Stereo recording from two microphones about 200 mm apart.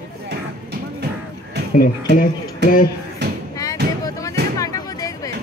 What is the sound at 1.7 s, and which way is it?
Speech, 40° left (ahead or behind).